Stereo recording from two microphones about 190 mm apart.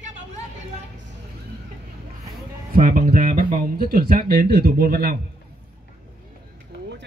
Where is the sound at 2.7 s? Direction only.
45° right (ahead or behind).